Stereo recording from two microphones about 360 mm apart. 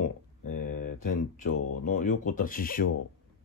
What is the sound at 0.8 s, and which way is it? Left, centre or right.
Mantra, left.